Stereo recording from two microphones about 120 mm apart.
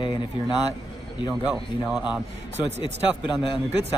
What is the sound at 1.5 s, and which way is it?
Speech, 5° right (ahead or behind).